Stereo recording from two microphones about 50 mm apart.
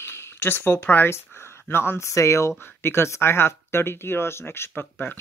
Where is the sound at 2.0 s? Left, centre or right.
Left.